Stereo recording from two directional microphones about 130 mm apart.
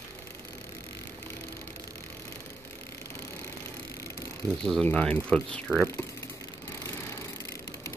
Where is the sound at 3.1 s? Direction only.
20° left (ahead or behind).